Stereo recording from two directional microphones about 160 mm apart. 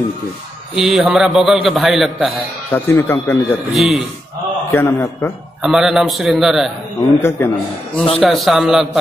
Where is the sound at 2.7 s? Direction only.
15° left (ahead or behind).